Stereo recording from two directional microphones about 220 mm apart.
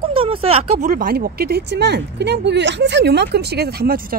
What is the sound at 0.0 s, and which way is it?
Speech, 25° right (ahead or behind).